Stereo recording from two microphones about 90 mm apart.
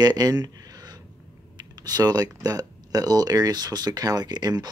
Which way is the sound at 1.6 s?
50° right (ahead or behind).